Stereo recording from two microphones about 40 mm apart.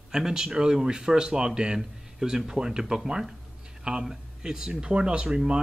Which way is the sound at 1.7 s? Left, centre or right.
Centre.